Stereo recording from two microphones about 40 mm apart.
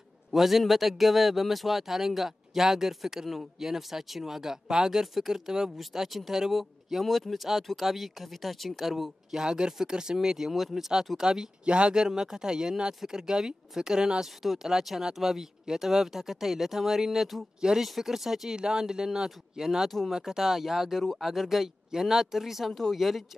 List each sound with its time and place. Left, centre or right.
0.3 s a man's voice: centre
5.0 s a man's voice: centre
10.5 s a man's voice: centre
11.1 s speech: centre
14.4 s a man's voice: centre
17.6 s speech: centre
17.8 s speech: centre
21.0 s a man's voice: centre
22.7 s a man's voice: centre